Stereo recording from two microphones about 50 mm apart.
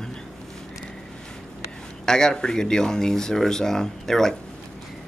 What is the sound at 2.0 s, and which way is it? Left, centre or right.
Speech, centre.